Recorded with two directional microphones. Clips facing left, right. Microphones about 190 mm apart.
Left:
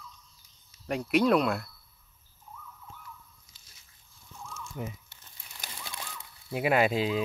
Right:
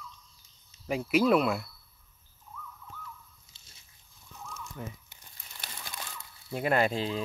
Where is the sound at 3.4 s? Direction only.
25° right (ahead or behind).